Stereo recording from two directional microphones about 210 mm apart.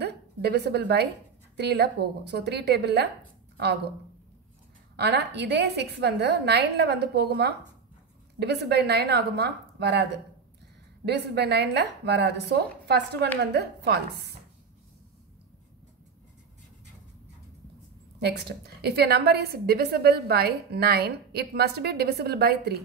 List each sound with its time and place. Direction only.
0.0 s a sound: 50° right (ahead or behind)
1.6 s a woman's voice: 50° right (ahead or behind)
4.9 s a woman's voice: 50° right (ahead or behind)
18.2 s a woman's voice: 50° right (ahead or behind)